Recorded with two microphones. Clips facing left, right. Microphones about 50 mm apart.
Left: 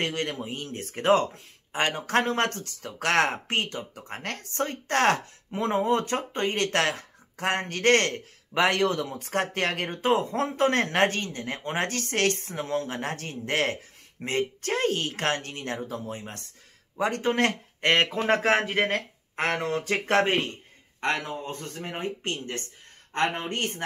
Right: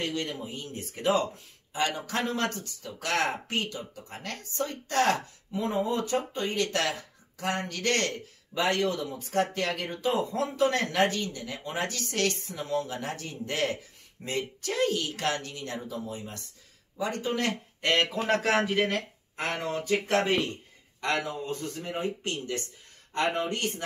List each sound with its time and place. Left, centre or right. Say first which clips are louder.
0.0 s speech: left 3 dB; left